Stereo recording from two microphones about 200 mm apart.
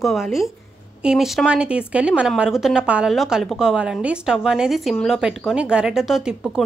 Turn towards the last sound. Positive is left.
turn(degrees=-5)  # may be behind; listen again after turning